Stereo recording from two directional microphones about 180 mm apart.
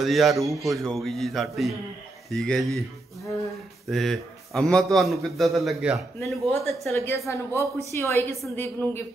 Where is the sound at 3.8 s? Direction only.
Centre (ahead or behind).